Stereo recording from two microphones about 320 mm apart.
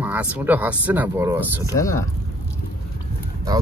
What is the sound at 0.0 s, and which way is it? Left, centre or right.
Speech, centre.